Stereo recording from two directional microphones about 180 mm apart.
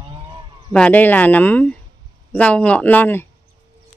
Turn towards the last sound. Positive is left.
turn(degrees=10)  # may be behind; listen again after turning